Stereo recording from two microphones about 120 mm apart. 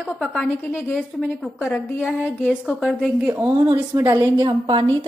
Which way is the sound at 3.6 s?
35° right (ahead or behind).